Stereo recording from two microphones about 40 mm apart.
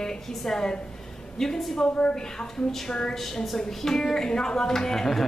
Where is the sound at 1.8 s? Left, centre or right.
Left.